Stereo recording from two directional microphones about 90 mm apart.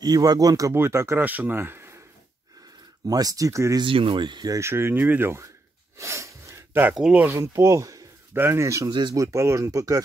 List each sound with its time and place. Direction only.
0.0 s speech: 45° right (ahead or behind)
0.7 s speech: 30° right (ahead or behind)
3.1 s speech: 45° right (ahead or behind)
3.8 s speech: 80° right; by 4.5 s 60° right (ahead or behind)
4.5 s speech: 30° right (ahead or behind)
5.9 s a sound: 35° right (ahead or behind)
6.7 s speech: 20° right (ahead or behind)
7.0 s speech: 10° right (ahead or behind)
7.2 s speech: 30° right (ahead or behind)